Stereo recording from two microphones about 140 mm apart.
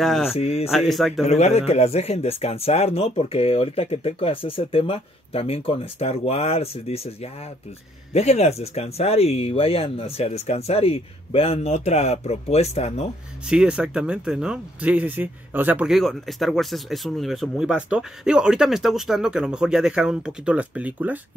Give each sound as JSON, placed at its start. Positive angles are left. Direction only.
{"t": 0.0, "sound": "speech", "side_deg": 0}
{"t": 0.4, "sound": "speech", "side_deg": 45}
{"t": 0.7, "sound": "speech", "side_deg": 0}
{"t": 1.2, "sound": "speech", "side_deg": 50}
{"t": 8.1, "sound": "speech", "side_deg": 50}
{"t": 13.5, "sound": "speech", "side_deg": -5}
{"t": 15.9, "sound": "speech", "side_deg": 0}